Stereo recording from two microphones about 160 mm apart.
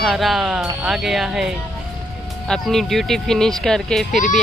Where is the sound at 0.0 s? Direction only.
Centre (ahead or behind).